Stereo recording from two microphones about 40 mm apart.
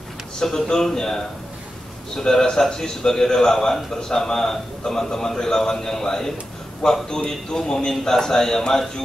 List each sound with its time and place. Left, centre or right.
0.4 s a man's voice: centre